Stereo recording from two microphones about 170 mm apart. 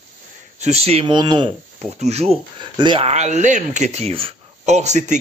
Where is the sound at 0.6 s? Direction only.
40° right (ahead or behind).